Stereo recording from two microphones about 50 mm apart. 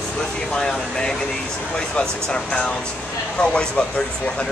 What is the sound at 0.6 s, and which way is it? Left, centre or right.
Speech, centre.